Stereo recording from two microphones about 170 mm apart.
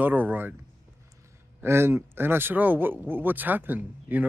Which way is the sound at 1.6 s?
15° right (ahead or behind).